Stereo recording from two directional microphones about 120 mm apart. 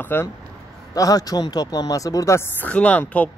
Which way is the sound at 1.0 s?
30° left (ahead or behind).